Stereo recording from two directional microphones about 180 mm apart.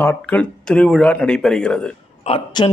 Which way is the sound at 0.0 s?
5° left (ahead or behind).